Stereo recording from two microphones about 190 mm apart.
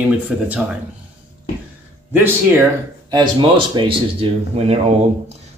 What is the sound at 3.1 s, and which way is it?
Speech, 25° right (ahead or behind).